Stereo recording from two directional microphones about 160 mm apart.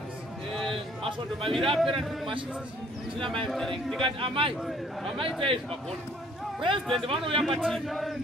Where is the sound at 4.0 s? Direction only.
35° right (ahead or behind).